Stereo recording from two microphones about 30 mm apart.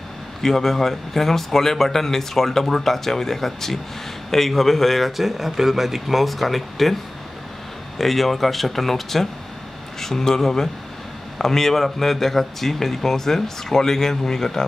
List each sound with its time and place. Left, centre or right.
0.4 s a man's voice: centre
8.0 s a man's voice: centre